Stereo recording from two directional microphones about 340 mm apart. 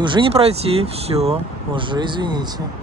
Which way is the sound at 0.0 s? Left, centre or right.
Centre.